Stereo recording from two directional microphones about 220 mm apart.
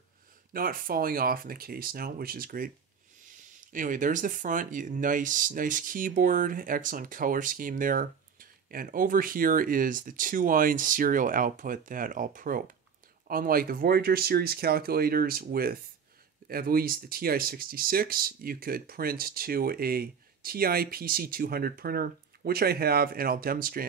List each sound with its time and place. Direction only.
0.5 s speech: 40° right (ahead or behind)
3.7 s speech: 35° right (ahead or behind)